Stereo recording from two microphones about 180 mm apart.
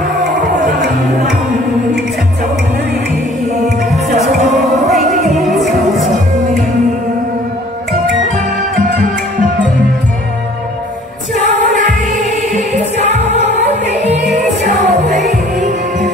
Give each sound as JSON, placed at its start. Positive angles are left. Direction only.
{"t": 4.5, "sound": "music", "side_deg": 0}
{"t": 12.3, "sound": "music", "side_deg": -40}